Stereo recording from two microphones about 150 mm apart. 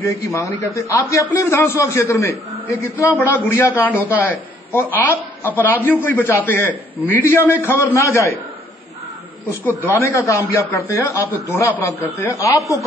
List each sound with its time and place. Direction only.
0.2 s a man's voice: 20° left (ahead or behind)
10.1 s a man's voice: 15° left (ahead or behind)